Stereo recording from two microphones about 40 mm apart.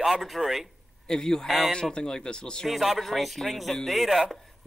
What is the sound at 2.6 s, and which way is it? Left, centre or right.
Speech, centre.